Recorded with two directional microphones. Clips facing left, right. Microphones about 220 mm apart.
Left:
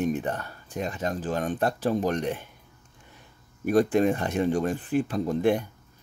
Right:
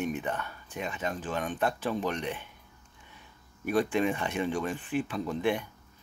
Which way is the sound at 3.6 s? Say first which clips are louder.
Left 6 dB; 45° left (ahead or behind).